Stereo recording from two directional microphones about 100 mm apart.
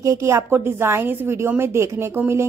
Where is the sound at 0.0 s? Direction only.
30° right (ahead or behind).